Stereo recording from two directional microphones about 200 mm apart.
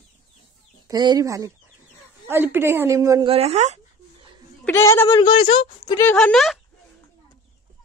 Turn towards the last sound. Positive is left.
turn(degrees=0)  # may be behind; listen again after turning